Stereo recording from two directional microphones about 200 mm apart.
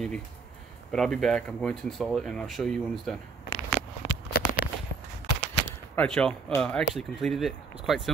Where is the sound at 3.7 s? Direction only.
5° right (ahead or behind).